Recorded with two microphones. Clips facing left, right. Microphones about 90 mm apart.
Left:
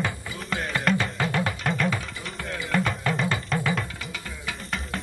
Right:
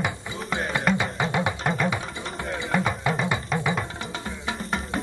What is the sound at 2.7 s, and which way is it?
Music, 10° right (ahead or behind).